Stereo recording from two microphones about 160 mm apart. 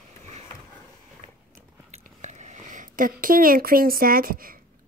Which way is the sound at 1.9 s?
45° right (ahead or behind).